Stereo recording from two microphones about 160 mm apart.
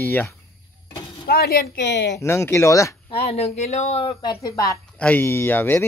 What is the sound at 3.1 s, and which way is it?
Speech, 40° left (ahead or behind).